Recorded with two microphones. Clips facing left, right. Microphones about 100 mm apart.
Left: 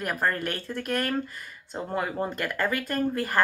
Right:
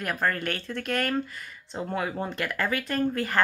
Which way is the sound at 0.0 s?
10° left (ahead or behind).